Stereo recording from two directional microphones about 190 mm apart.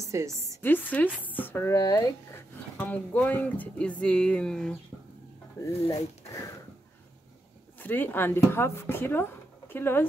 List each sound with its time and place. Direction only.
0.0 s a woman's voice: 15° right (ahead or behind)
0.6 s speech: 10° left (ahead or behind)
5.9 s speech: 15° left (ahead or behind)
7.8 s speech: 10° left (ahead or behind)